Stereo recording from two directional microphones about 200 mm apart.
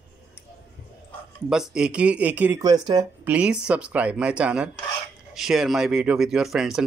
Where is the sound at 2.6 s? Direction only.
20° right (ahead or behind).